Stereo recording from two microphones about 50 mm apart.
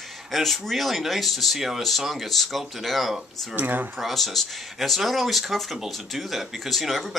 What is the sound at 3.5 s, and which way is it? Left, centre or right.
Speech, right.